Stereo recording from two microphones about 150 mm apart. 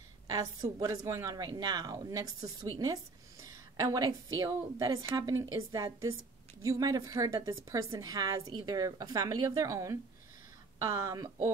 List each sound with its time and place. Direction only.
0.3 s a woman's voice: 25° right (ahead or behind)